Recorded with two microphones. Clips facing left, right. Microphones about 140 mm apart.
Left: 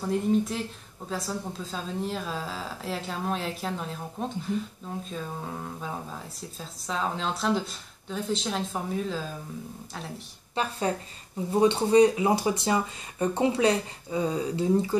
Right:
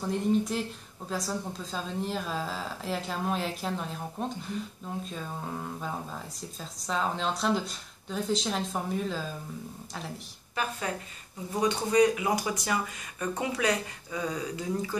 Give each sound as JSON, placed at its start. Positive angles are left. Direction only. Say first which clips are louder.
{"t": 0.0, "sound": "speech", "louder": "left 2 dB", "side_deg": 0}
{"t": 10.5, "sound": "speech", "louder": "left 4 dB", "side_deg": 30}